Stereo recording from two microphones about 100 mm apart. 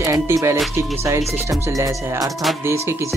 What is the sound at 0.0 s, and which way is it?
Music, 35° right (ahead or behind).